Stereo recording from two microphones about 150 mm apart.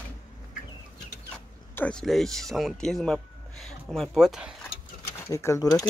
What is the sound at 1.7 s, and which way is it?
Speech, 5° left (ahead or behind).